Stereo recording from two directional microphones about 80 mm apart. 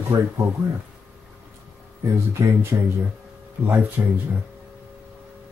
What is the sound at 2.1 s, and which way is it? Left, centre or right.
Speech, right.